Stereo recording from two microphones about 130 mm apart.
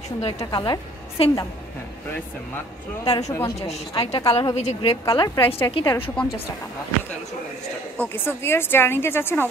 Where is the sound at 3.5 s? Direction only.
55° left (ahead or behind).